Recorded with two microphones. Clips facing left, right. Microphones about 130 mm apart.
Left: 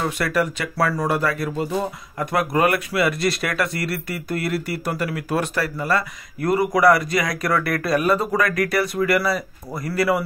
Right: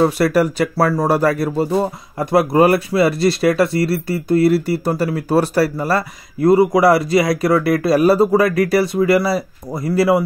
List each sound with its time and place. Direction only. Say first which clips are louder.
0.0 s speech: right 8 dB; 35° right (ahead or behind)